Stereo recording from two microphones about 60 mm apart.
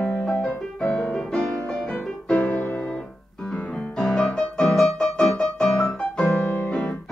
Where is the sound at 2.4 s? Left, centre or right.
Left.